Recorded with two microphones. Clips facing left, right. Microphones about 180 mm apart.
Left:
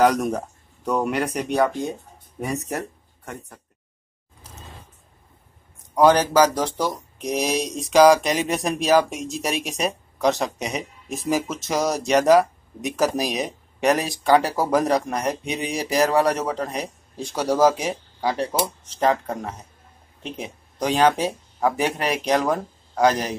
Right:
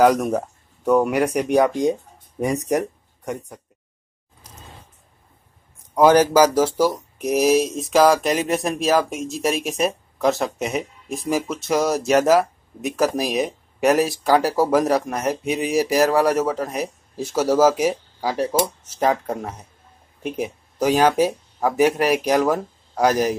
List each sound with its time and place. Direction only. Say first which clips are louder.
0.0 s speech: right 3 dB; 5° right (ahead or behind)
5.9 s speech: right 2 dB; 10° right (ahead or behind)